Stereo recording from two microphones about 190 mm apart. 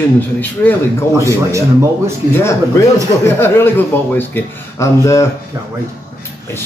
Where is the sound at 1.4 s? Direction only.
15° right (ahead or behind).